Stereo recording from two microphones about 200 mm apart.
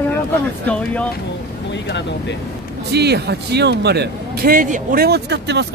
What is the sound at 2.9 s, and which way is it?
Speech, 55° right (ahead or behind).